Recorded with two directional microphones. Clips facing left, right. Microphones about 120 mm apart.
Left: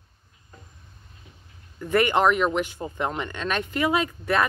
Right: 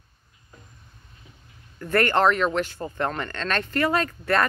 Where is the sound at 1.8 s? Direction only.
15° left (ahead or behind).